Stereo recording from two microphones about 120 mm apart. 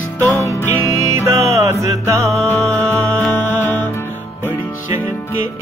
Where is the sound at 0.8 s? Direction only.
25° right (ahead or behind).